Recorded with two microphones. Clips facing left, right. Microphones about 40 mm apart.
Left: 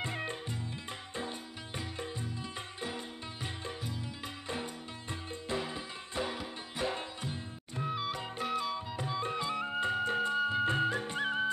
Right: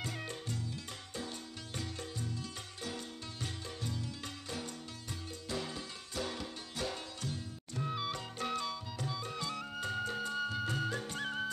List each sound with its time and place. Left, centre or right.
0.0 s music: left
1.8 s music: left
5.5 s music: left
7.9 s music: centre
8.7 s music: left